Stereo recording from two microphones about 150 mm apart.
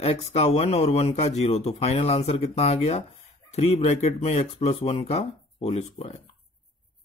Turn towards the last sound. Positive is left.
turn(degrees=45)  # may be behind; listen again after turning